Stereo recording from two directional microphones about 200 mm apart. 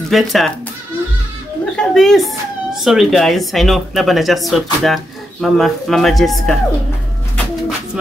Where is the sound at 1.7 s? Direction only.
Centre (ahead or behind).